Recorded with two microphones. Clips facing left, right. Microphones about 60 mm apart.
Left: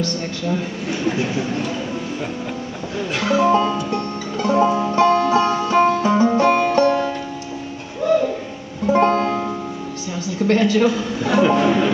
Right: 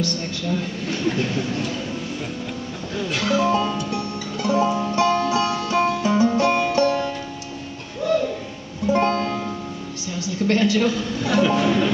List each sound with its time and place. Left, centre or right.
0.5 s speech: centre
3.0 s speech: centre
4.9 s music: centre
9.1 s music: left
10.4 s speech: centre